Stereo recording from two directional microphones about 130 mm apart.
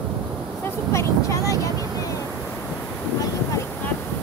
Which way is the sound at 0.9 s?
20° left (ahead or behind).